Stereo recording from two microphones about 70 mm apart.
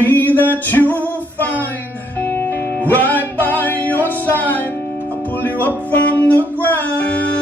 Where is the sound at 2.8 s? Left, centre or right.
Left.